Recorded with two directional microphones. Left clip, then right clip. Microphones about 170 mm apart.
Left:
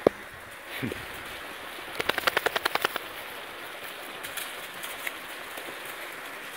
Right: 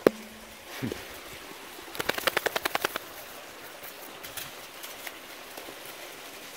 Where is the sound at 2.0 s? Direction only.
50° right (ahead or behind).